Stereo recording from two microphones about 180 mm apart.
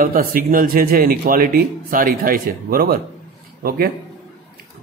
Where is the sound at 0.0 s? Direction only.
50° right (ahead or behind).